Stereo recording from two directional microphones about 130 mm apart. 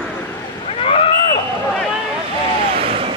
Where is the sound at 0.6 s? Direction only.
45° left (ahead or behind).